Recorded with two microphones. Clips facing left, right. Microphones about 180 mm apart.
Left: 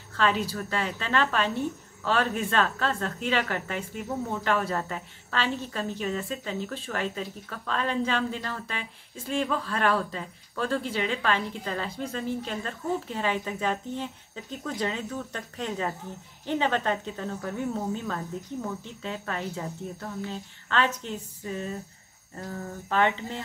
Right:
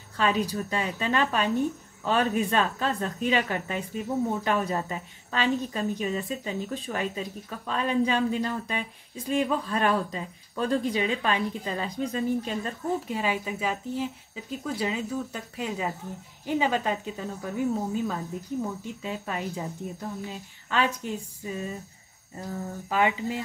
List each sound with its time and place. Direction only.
0.2 s a woman's voice: 15° right (ahead or behind)
22.4 s a woman's voice: 10° right (ahead or behind)